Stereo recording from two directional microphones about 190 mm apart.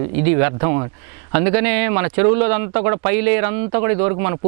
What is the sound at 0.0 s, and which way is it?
A man's voice, 15° right (ahead or behind).